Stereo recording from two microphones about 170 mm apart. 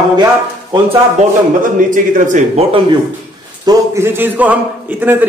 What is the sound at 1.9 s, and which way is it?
Speech, 45° right (ahead or behind).